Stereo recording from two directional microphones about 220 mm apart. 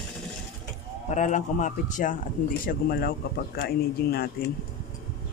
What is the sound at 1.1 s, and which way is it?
A man's voice, 35° left (ahead or behind).